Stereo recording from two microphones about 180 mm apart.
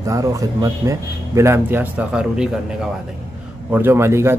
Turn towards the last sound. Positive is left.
turn(degrees=-15)  # may be behind; listen again after turning